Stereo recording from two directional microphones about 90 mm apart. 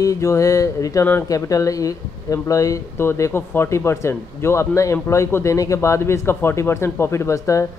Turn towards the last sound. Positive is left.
turn(degrees=35)  # may be behind; listen again after turning